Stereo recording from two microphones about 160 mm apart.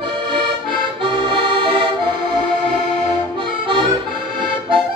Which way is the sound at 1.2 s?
35° right (ahead or behind).